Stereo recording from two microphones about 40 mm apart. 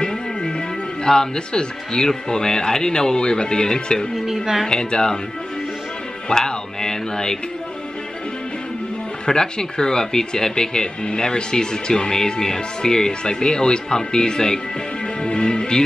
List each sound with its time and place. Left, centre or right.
0.0 s speech: centre
4.3 s a woman's voice: centre
4.6 s speech: centre
6.2 s speech: centre
9.2 s speech: centre
15.2 s music: left